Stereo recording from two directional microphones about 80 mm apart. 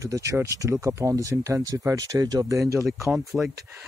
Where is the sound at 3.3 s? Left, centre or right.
Centre.